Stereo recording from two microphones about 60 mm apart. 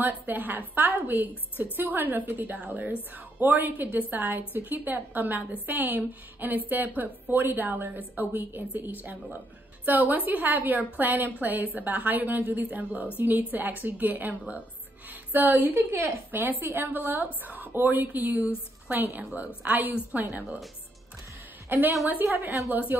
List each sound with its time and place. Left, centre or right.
0.0 s a woman's voice: right
21.6 s a woman's voice: right